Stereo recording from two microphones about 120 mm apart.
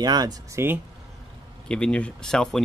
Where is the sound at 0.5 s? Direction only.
20° right (ahead or behind).